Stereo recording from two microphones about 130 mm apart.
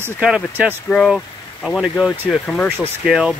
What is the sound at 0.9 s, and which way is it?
Speech, 5° left (ahead or behind).